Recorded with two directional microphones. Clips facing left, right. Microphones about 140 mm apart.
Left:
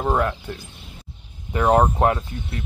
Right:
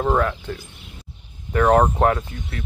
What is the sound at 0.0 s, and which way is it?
Speech, 10° left (ahead or behind).